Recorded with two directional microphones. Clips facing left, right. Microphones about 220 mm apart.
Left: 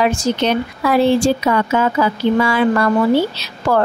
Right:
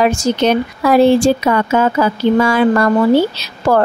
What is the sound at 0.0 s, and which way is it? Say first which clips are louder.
Speech: right 3 dB; 45° right (ahead or behind).